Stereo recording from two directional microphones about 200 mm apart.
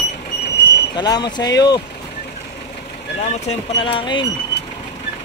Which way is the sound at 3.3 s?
30° left (ahead or behind).